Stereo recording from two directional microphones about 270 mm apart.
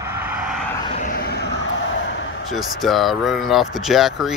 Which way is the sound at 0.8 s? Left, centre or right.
Left.